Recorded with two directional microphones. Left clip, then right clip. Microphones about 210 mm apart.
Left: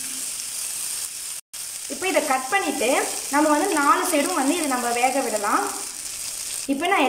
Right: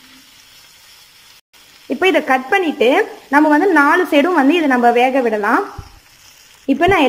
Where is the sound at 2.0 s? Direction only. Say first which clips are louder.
Right 8 dB; 35° right (ahead or behind).